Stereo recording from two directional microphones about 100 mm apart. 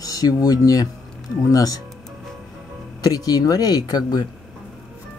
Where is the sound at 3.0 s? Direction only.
40° left (ahead or behind).